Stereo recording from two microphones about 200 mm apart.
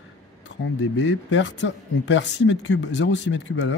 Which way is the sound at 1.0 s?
65° left (ahead or behind).